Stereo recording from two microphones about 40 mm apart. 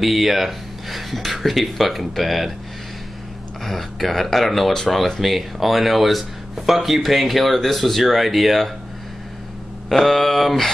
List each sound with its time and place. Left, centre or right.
0.0 s speech: centre
3.6 s speech: centre
9.8 s speech: centre